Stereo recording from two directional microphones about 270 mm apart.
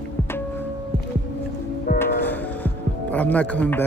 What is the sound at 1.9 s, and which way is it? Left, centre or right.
Music, left.